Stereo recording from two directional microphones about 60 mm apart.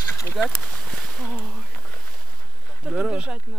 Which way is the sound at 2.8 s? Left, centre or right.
Centre.